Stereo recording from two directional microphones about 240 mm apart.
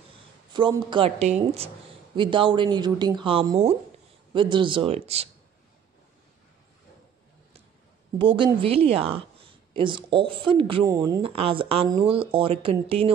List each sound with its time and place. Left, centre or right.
0.5 s a woman's voice: centre
8.2 s a woman's voice: right